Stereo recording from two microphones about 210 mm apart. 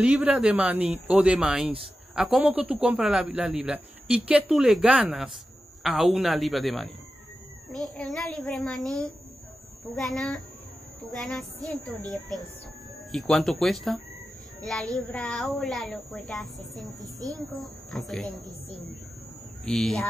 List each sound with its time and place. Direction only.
0.0 s a man's voice: 5° right (ahead or behind)
17.0 s a woman's voice: 15° right (ahead or behind)
17.4 s a man's voice: centre (ahead or behind)
19.6 s a man's voice: centre (ahead or behind)